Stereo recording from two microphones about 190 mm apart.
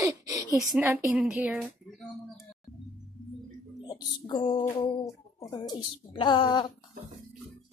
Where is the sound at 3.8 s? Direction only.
20° left (ahead or behind).